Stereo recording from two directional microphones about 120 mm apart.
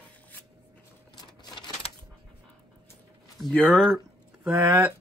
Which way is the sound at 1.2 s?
40° left (ahead or behind).